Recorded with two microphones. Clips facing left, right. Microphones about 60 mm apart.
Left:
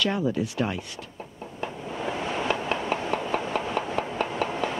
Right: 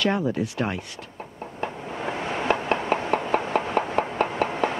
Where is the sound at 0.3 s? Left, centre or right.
Right.